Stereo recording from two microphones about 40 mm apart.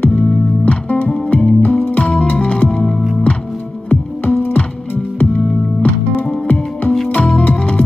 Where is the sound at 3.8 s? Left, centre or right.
Left.